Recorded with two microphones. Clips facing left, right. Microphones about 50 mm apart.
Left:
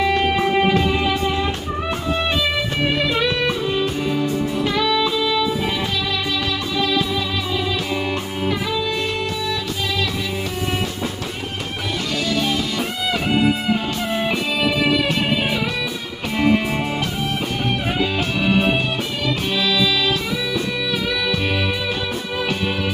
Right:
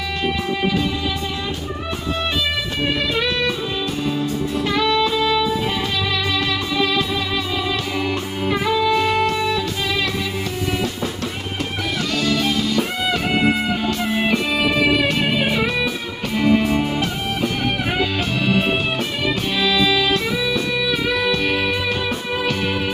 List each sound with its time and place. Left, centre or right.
0.0 s music: left
3.0 s music: centre
3.4 s music: left
4.7 s music: centre
7.9 s music: centre
8.7 s music: centre
12.4 s music: centre
16.3 s music: centre
19.5 s music: centre